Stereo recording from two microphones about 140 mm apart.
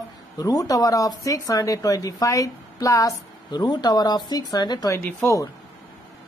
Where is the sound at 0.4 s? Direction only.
25° left (ahead or behind).